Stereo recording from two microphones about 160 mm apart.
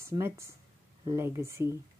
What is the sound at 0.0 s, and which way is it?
Speech, 15° right (ahead or behind).